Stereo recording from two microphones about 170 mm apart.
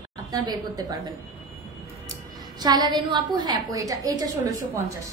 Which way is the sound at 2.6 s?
25° right (ahead or behind).